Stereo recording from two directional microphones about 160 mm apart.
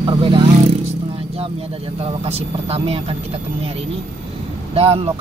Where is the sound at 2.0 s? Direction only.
40° right (ahead or behind).